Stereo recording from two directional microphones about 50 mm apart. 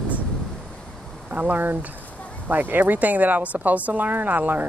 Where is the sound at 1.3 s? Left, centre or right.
Right.